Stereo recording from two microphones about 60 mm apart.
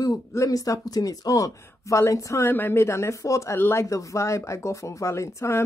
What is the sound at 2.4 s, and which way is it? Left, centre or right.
Speech, left.